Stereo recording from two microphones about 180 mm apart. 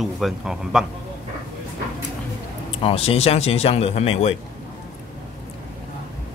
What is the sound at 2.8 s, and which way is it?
Speech, 35° left (ahead or behind).